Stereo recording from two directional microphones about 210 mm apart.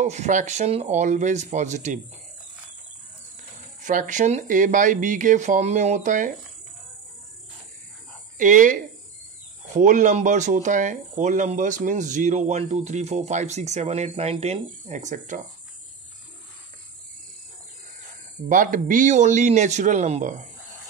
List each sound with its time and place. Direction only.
0.0 s speech: 35° right (ahead or behind)
3.8 s speech: 40° right (ahead or behind)
8.4 s speech: 40° right (ahead or behind)
18.5 s speech: 40° right (ahead or behind)